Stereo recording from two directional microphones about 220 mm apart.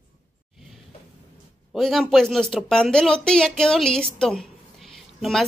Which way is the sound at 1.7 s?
Centre (ahead or behind).